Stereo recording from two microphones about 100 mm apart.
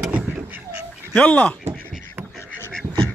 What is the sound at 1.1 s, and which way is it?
Speech, 15° left (ahead or behind).